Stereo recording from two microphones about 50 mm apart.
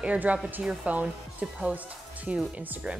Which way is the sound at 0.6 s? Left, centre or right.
Centre.